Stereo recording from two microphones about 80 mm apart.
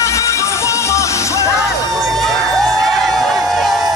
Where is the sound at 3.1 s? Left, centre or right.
Centre.